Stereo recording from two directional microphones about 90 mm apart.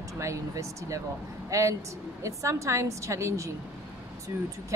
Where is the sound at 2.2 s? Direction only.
35° right (ahead or behind).